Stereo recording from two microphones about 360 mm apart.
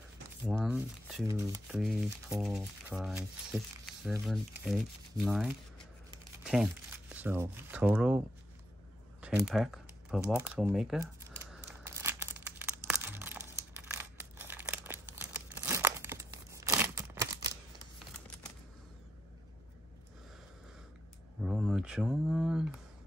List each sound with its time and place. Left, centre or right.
0.5 s speech: centre
9.2 s speech: centre
11.5 s crumpling: centre
21.4 s a sound: centre